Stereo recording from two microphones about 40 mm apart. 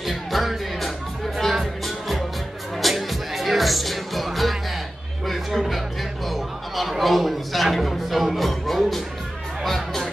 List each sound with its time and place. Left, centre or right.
0.0 s music: centre
5.2 s a sound: centre
9.7 s music: centre